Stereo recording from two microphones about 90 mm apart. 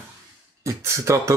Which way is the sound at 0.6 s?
35° right (ahead or behind).